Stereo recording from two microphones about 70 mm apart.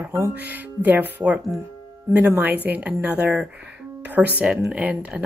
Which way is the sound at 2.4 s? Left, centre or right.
Right.